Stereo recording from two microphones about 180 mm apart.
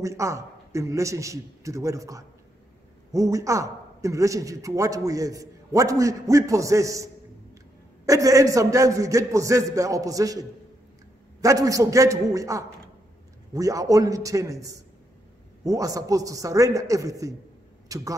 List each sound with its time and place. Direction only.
0.0 s a man's voice: 15° right (ahead or behind)
11.4 s a man's voice: 20° right (ahead or behind)